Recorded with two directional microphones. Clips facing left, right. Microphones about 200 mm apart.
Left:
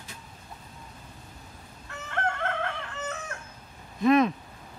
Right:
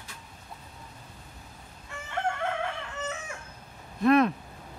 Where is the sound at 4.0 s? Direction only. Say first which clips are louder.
Even; centre (ahead or behind).